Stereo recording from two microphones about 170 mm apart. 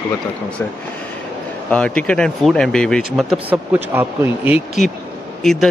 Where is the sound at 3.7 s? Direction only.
10° right (ahead or behind).